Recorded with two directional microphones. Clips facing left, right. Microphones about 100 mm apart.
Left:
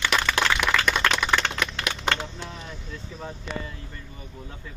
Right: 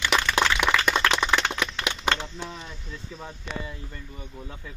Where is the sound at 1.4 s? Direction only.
20° right (ahead or behind).